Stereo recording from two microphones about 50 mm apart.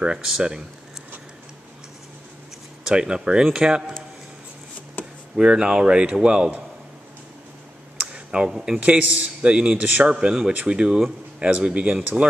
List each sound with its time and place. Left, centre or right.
0.0 s speech: centre
2.8 s speech: centre
5.0 s a sound: left
5.3 s a man's voice: centre
8.1 s speech: right
8.7 s a man's voice: right